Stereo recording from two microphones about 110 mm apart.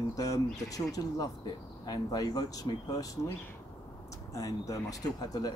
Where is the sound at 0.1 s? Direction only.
30° left (ahead or behind).